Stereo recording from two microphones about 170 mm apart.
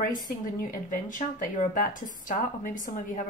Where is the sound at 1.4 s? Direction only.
50° left (ahead or behind).